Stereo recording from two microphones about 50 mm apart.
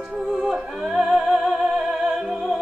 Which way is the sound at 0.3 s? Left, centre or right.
Centre.